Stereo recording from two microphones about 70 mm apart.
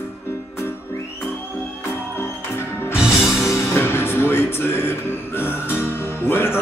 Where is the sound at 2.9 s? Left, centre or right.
Centre.